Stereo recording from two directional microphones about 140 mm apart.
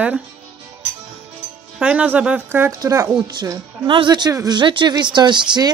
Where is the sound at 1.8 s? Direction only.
10° right (ahead or behind).